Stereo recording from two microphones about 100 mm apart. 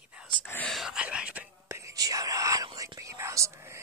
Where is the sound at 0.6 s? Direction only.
Centre (ahead or behind).